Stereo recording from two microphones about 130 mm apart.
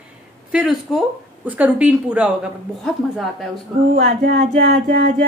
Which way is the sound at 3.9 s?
90° right.